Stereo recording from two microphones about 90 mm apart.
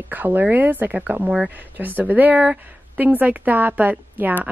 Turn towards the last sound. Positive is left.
turn(degrees=-20)  # may be behind; listen again after turning